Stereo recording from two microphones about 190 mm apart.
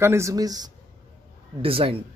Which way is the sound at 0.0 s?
15° right (ahead or behind).